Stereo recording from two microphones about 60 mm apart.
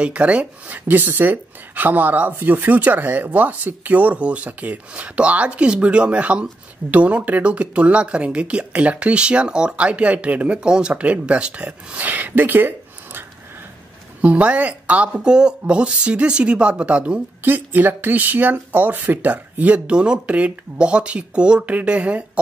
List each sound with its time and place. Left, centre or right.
0.0 s speech: right
14.2 s speech: right
17.4 s speech: right